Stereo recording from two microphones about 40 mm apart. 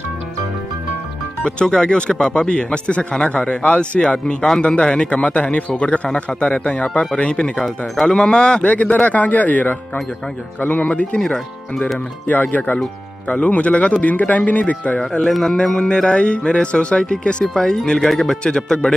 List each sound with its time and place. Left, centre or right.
1.4 s a man's voice: left
4.1 s speech: left
7.6 s speech: centre
8.1 s speech: left
8.9 s speech: left
10.9 s speech: left
12.3 s a man's voice: left
15.2 s speech: centre
15.5 s speech: left
18.4 s speech: left